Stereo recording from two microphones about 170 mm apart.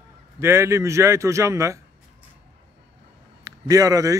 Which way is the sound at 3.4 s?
20° right (ahead or behind).